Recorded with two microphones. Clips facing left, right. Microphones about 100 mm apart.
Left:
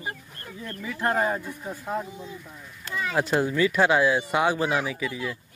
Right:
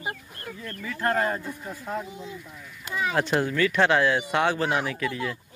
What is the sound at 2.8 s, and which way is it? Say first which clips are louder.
Speech: right 2 dB; 15° right (ahead or behind).